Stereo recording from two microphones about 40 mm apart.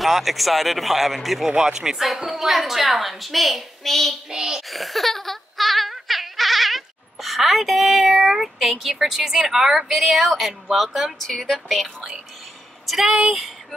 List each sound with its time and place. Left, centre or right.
0.0 s a woman's voice: centre
1.5 s a woman's voice: centre
4.3 s a woman's voice: centre
4.6 s a sound: centre
8.9 s a woman's voice: centre
11.1 s a woman's voice: centre